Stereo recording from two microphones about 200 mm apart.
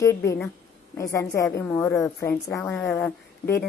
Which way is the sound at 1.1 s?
15° left (ahead or behind).